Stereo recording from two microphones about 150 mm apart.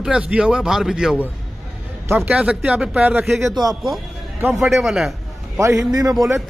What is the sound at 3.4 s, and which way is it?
Speech, 25° right (ahead or behind).